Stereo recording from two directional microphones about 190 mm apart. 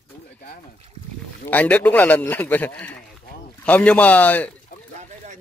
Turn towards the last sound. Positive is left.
turn(degrees=10)  # may be behind; listen again after turning